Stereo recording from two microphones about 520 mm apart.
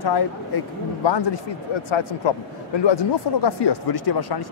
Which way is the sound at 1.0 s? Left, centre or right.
Left.